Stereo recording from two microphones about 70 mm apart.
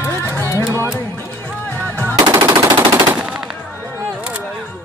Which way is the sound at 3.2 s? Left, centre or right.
Centre.